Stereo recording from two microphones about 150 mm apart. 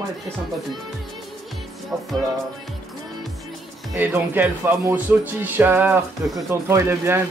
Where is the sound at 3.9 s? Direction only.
15° right (ahead or behind).